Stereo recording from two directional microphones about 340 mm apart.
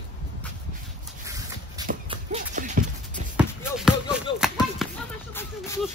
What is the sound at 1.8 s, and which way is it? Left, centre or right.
Horse, centre.